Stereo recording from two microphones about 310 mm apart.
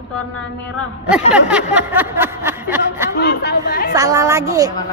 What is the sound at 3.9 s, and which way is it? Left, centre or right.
Speech, centre.